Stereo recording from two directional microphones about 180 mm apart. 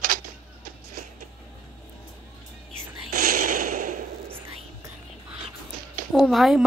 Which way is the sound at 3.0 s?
50° right (ahead or behind).